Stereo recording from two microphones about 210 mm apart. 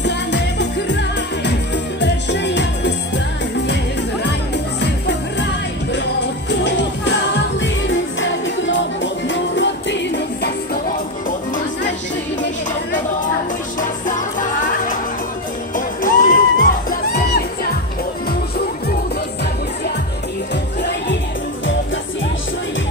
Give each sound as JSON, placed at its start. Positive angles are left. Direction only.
{"t": 0.0, "sound": "music", "side_deg": 55}
{"t": 2.0, "sound": "music", "side_deg": 55}
{"t": 6.6, "sound": "music", "side_deg": 60}
{"t": 11.2, "sound": "music", "side_deg": 40}
{"t": 13.7, "sound": "music", "side_deg": 40}